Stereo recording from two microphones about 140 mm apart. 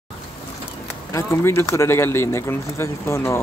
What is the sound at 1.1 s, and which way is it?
Speech, 20° left (ahead or behind).